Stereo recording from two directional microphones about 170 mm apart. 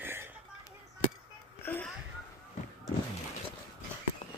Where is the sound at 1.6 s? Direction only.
10° left (ahead or behind).